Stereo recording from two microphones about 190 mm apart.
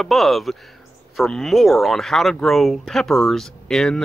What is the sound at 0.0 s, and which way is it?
Speech, centre (ahead or behind).